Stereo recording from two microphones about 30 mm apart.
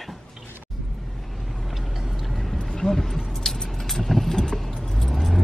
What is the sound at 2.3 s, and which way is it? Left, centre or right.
Vehicle, centre.